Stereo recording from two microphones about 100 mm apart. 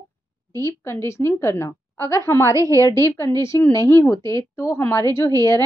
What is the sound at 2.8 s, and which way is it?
A woman's voice, 30° left (ahead or behind).